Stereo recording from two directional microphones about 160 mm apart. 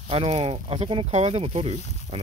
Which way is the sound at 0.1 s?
35° right (ahead or behind).